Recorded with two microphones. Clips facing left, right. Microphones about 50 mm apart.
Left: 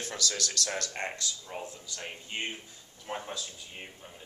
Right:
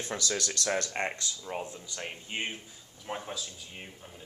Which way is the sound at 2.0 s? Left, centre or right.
Centre.